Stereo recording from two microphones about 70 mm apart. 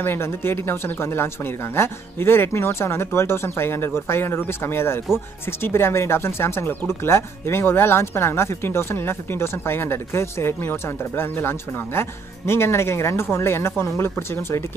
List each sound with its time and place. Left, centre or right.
0.0 s speech: left